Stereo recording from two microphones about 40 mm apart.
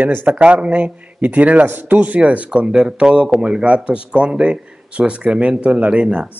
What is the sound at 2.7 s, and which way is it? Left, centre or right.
Speech, right.